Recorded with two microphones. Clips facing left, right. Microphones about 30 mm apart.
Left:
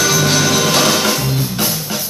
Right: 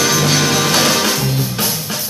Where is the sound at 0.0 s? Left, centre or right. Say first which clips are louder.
Even; right.